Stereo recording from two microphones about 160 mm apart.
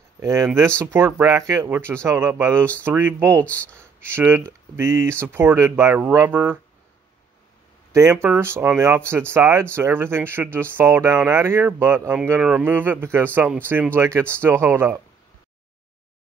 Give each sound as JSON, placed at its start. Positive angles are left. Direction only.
{"t": 0.2, "sound": "speech", "side_deg": -20}
{"t": 7.9, "sound": "speech", "side_deg": -15}